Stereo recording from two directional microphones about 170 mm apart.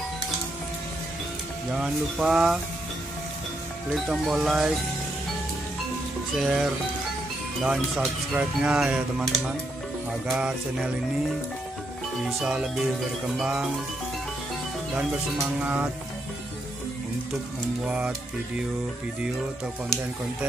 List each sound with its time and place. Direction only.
1.7 s speech: 5° right (ahead or behind)
3.9 s speech: centre (ahead or behind)
6.3 s speech: 5° right (ahead or behind)
12.2 s speech: centre (ahead or behind)
15.0 s speech: 10° right (ahead or behind)
17.8 s speech: 5° right (ahead or behind)